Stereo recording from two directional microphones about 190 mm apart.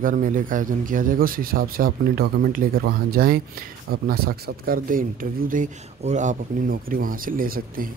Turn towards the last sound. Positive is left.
turn(degrees=-50)  # may be behind; listen again after turning